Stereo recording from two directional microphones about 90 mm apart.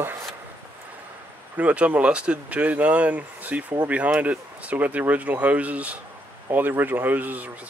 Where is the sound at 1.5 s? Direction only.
15° right (ahead or behind).